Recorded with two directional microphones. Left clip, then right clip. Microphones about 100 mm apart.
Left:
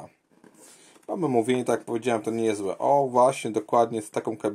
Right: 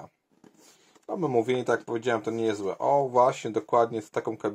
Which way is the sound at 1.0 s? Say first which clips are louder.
Left 2 dB; 30° left (ahead or behind).